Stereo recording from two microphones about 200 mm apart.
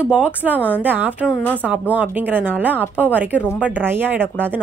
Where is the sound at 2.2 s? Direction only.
10° right (ahead or behind).